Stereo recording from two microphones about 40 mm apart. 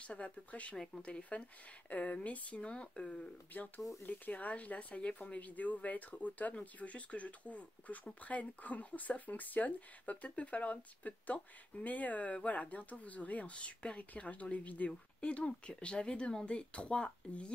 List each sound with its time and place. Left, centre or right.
0.0 s speech: left
3.5 s speech: left
4.3 s speech: left